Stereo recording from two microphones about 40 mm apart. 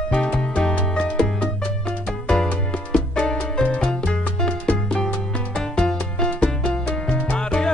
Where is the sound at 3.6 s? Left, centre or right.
Left.